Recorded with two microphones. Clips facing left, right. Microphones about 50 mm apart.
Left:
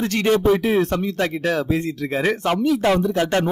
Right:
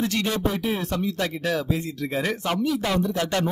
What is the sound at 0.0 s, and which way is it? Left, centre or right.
Speech, left.